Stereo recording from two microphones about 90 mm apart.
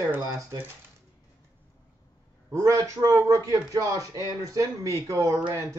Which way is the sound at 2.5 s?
35° right (ahead or behind).